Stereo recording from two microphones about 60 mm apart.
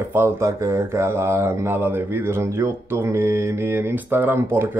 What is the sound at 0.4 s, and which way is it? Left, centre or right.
Speech, right.